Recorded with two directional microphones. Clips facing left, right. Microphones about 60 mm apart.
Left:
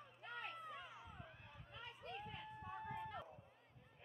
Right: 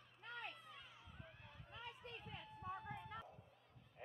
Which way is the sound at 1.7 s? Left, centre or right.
Centre.